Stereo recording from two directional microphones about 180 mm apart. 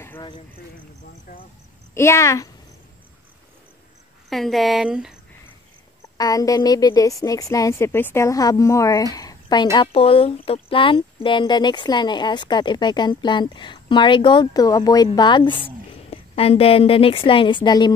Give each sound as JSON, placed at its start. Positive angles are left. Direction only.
{"t": 2.0, "sound": "a child's voice", "side_deg": 15}
{"t": 4.3, "sound": "speech", "side_deg": 0}
{"t": 6.1, "sound": "a woman's voice", "side_deg": 20}